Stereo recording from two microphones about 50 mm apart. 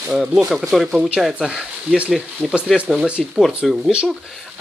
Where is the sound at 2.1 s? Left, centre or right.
Centre.